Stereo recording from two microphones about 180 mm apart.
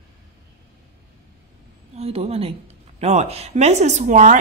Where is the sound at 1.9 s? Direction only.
35° right (ahead or behind).